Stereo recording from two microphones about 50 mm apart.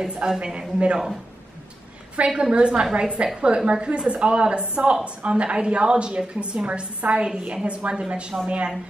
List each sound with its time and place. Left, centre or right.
0.0 s speech: centre
2.1 s a woman's voice: right